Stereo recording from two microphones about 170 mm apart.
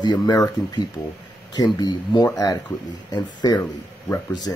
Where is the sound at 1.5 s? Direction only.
25° left (ahead or behind).